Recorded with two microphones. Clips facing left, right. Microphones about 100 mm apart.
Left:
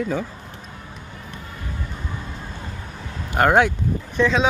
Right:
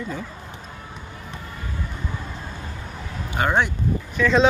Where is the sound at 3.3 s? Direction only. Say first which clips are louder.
Left 5 dB; 60° left (ahead or behind).